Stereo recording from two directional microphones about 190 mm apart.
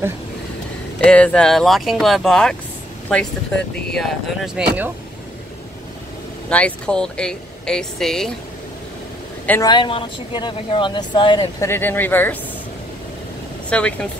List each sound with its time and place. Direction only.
1.0 s speech: 5° left (ahead or behind)
6.5 s speech: 5° left (ahead or behind)
9.5 s speech: 20° left (ahead or behind)
13.7 s speech: 5° left (ahead or behind)